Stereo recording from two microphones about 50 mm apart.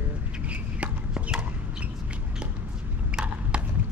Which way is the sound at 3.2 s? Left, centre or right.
Right.